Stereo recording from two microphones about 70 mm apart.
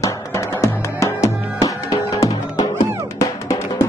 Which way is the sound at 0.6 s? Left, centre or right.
Left.